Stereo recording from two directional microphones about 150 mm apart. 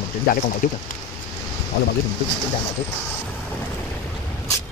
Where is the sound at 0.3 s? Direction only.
75° left (ahead or behind).